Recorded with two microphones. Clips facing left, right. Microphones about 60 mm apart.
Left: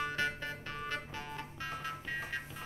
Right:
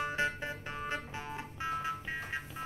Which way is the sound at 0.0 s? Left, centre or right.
Centre.